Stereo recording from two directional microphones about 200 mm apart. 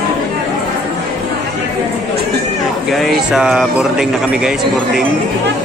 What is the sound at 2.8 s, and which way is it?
A man's voice, centre (ahead or behind).